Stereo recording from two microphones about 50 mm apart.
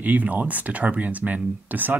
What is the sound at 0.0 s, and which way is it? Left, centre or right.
Speech, right.